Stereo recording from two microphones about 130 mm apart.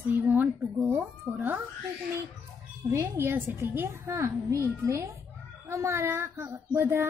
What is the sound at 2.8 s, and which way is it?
A child's voice, 20° right (ahead or behind).